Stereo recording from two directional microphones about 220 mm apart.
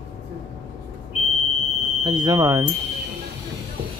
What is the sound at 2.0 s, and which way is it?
Speech, 20° right (ahead or behind).